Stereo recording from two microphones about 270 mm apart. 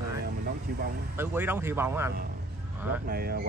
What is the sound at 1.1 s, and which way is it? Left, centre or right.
Speech, centre.